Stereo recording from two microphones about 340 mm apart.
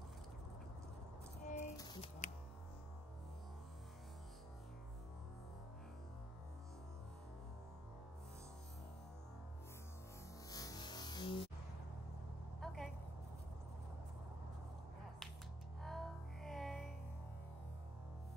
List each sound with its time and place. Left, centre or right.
1.4 s a sound: left
2.2 s music: left
10.5 s music: centre
12.5 s vehicle: centre
15.8 s music: centre